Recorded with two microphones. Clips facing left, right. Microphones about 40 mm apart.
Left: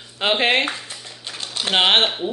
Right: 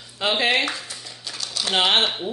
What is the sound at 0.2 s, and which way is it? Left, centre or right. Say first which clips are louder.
Speech: left 2 dB; left.